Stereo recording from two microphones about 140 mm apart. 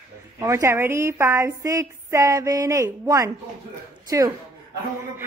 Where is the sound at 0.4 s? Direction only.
20° right (ahead or behind).